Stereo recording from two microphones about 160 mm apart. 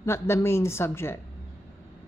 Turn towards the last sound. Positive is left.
turn(degrees=15)  # may be behind; listen again after turning